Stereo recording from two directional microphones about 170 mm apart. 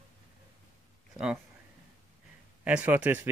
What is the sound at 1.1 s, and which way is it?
Speech, 5° right (ahead or behind).